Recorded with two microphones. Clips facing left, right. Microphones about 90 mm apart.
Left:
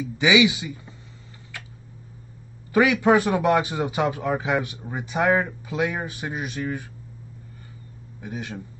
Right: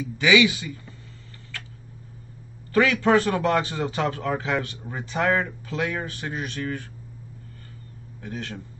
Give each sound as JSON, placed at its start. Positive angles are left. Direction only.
{"t": 0.0, "sound": "speech", "side_deg": 20}
{"t": 1.5, "sound": "a sound", "side_deg": 15}
{"t": 2.7, "sound": "a man's voice", "side_deg": 15}
{"t": 8.2, "sound": "a man's voice", "side_deg": 15}